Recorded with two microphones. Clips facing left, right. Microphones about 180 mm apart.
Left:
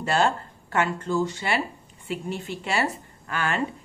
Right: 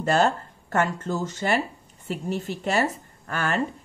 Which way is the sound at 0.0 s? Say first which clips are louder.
Right 2 dB; 45° right (ahead or behind).